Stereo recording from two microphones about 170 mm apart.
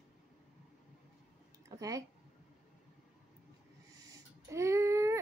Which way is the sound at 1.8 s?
20° right (ahead or behind).